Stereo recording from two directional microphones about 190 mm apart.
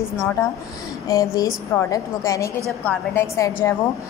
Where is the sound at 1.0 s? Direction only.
15° left (ahead or behind).